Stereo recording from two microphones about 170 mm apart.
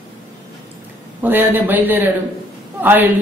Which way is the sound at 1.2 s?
10° right (ahead or behind).